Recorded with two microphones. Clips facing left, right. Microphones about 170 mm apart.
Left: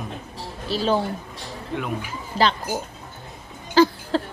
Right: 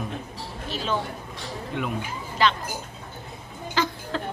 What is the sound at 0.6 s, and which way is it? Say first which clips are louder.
Speech: left 6 dB; 35° left (ahead or behind).